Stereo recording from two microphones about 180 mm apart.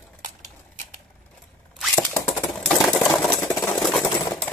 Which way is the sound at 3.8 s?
Centre (ahead or behind).